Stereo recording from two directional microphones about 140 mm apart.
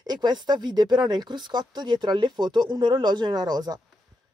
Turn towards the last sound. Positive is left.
turn(degrees=-30)  # may be behind; listen again after turning